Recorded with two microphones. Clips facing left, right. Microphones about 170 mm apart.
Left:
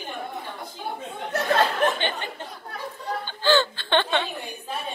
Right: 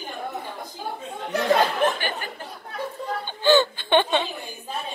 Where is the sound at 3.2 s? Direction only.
15° right (ahead or behind).